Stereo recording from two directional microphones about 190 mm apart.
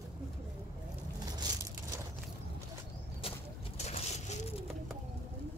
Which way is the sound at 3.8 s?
35° left (ahead or behind).